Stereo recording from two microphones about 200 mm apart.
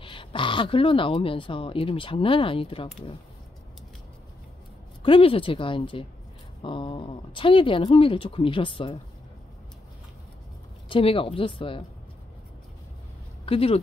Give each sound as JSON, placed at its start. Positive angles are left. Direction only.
{"t": 0.0, "sound": "speech", "side_deg": 25}
{"t": 5.0, "sound": "speech", "side_deg": 25}
{"t": 10.9, "sound": "speech", "side_deg": 25}
{"t": 13.5, "sound": "speech", "side_deg": 30}